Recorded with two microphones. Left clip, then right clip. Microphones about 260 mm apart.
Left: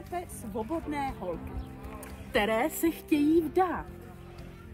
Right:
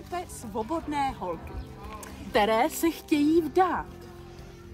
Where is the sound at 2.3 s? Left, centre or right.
Right.